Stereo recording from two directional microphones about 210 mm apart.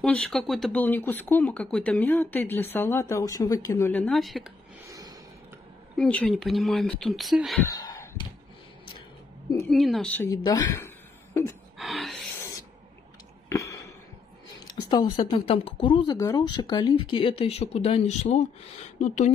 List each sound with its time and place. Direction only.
0.0 s speech: 5° left (ahead or behind)
4.8 s a sound: 15° right (ahead or behind)
5.9 s speech: 5° left (ahead or behind)
7.7 s a sound: 15° left (ahead or behind)
9.7 s speech: centre (ahead or behind)
10.3 s speech: 20° left (ahead or behind)
11.8 s speech: centre (ahead or behind)
13.5 s a sound: 15° left (ahead or behind)
14.8 s speech: 20° left (ahead or behind)